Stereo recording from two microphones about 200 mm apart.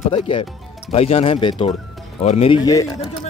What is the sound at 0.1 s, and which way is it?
Speech, 25° left (ahead or behind).